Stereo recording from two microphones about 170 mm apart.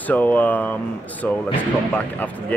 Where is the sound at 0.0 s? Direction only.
10° left (ahead or behind).